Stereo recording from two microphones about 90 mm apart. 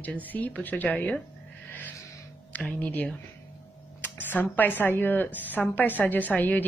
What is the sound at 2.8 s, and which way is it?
A woman's voice, 15° left (ahead or behind).